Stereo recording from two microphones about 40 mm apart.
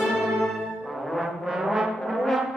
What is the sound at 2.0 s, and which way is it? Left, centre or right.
Brass instrument, centre.